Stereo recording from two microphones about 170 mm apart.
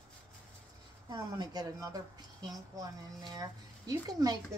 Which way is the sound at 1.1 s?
25° right (ahead or behind).